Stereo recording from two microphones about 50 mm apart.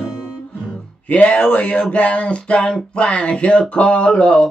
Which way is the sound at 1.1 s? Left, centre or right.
Left.